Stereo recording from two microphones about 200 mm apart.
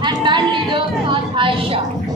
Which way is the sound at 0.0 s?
20° right (ahead or behind).